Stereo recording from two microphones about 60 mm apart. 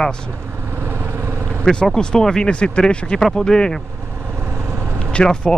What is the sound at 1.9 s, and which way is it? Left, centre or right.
Speech, centre.